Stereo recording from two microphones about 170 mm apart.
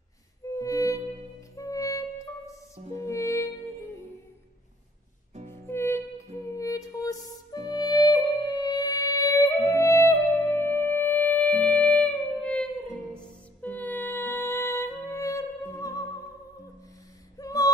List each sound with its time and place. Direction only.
0.5 s music: 20° left (ahead or behind)
5.5 s music: 15° left (ahead or behind)
17.4 s a sound: 20° left (ahead or behind)